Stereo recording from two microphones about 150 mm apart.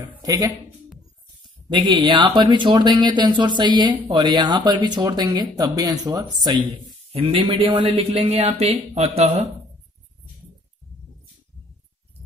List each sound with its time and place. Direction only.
0.2 s speech: 25° right (ahead or behind)
1.7 s speech: 30° right (ahead or behind)
7.1 s speech: 35° right (ahead or behind)